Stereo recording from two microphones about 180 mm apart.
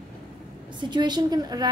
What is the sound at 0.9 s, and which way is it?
Speech, 25° right (ahead or behind).